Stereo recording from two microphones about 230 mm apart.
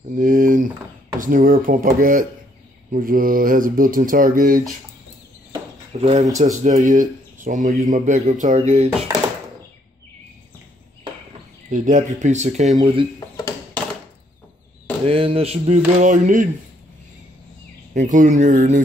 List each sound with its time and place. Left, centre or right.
0.1 s speech: right
5.5 s a sound: right
6.3 s speech: right
11.7 s speech: right
15.0 s speech: right
17.9 s speech: right